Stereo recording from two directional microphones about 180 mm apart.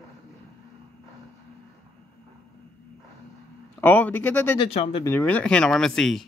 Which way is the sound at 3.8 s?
10° left (ahead or behind).